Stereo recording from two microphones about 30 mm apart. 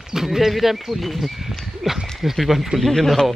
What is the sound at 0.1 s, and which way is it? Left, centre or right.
Speech, centre.